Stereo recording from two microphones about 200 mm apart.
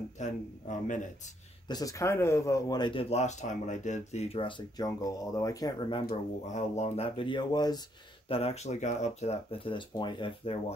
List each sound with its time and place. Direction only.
0.2 s speech: 40° left (ahead or behind)
1.7 s speech: 15° left (ahead or behind)
6.0 s speech: 35° left (ahead or behind)
8.3 s speech: 30° left (ahead or behind)